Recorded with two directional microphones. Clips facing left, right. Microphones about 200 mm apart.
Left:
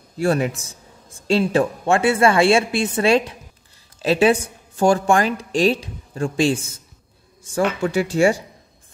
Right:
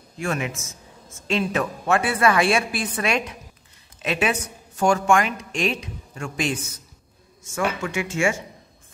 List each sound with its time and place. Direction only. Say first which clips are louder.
0.2 s a man's voice: left 7 dB; 35° left (ahead or behind)
7.8 s a woman's voice: left 6 dB; 35° left (ahead or behind)